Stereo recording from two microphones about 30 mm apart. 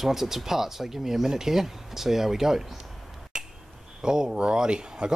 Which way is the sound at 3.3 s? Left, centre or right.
Right.